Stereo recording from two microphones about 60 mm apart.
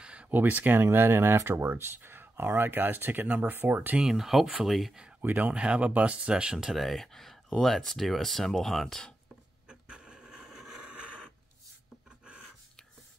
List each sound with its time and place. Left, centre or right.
0.0 s a sound: centre
0.3 s speech: right
4.0 s speech: centre
5.2 s speech: right
5.5 s speech: centre
6.7 s speech: centre
9.7 s a sound: centre
10.8 s neigh: centre